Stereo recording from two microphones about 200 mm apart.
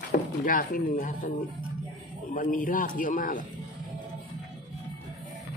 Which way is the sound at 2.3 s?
40° left (ahead or behind).